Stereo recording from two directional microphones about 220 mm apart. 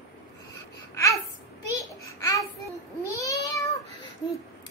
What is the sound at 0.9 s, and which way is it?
Babbling, 15° left (ahead or behind).